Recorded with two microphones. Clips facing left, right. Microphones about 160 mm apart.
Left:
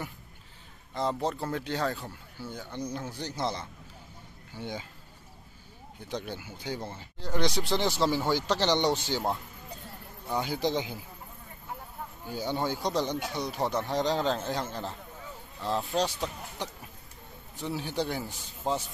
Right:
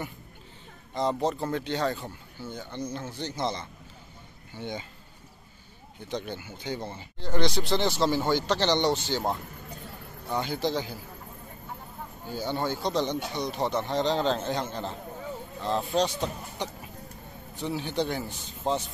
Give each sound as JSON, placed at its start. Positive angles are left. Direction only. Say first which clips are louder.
{"t": 0.9, "sound": "speech", "louder": "right 3 dB", "side_deg": 0}
{"t": 6.0, "sound": "speech", "louder": "right 2 dB", "side_deg": 5}
{"t": 10.3, "sound": "speech", "louder": "right 1 dB", "side_deg": 10}
{"t": 12.3, "sound": "speech", "louder": "right 1 dB", "side_deg": 10}
{"t": 16.0, "sound": "speech", "louder": "right 3 dB", "side_deg": 5}